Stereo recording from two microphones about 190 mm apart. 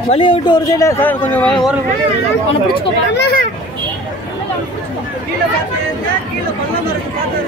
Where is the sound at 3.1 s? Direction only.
55° left (ahead or behind).